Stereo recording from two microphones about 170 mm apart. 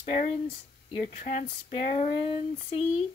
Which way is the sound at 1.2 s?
45° left (ahead or behind).